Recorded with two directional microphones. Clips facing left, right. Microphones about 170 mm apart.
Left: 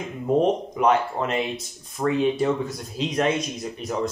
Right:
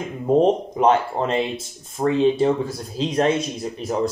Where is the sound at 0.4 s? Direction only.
30° right (ahead or behind).